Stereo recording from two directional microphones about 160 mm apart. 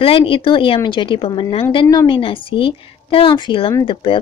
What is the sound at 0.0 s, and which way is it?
A woman's voice, 35° left (ahead or behind).